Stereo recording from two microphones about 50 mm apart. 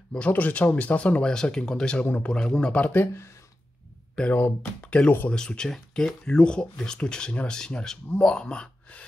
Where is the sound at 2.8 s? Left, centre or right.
Left.